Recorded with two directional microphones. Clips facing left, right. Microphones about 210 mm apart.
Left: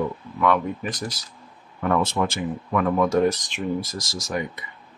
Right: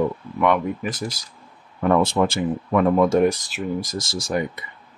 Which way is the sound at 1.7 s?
30° right (ahead or behind).